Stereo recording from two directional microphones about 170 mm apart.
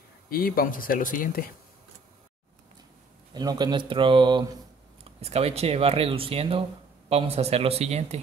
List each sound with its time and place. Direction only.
0.3 s speech: 60° left (ahead or behind)
3.3 s speech: 25° right (ahead or behind)
5.2 s speech: 35° right (ahead or behind)